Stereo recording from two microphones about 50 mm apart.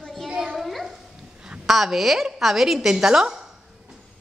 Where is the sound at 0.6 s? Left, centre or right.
Centre.